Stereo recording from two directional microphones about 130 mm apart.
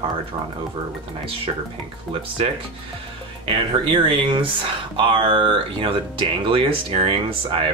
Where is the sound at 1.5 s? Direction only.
45° right (ahead or behind).